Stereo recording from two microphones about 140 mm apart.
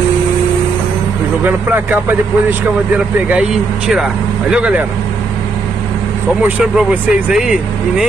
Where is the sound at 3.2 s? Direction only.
5° right (ahead or behind).